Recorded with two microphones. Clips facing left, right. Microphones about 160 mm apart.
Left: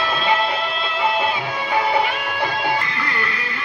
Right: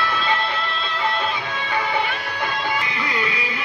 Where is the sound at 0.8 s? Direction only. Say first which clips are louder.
Left 4 dB; 10° left (ahead or behind).